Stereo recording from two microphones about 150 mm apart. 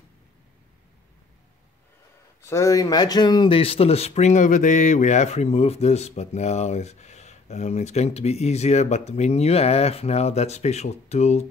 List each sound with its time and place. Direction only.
2.4 s speech: 20° left (ahead or behind); by 11.4 s 45° left (ahead or behind)